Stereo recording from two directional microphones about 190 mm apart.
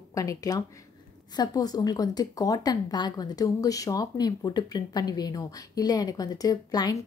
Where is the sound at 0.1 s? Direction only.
15° left (ahead or behind).